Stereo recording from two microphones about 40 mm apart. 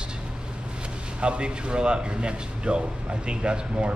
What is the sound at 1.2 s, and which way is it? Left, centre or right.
Speech, right.